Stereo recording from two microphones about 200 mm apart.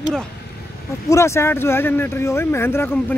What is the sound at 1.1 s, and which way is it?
Speech, 15° left (ahead or behind).